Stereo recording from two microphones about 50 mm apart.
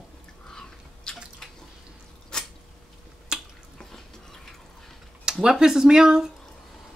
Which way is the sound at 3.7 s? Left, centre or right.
Centre.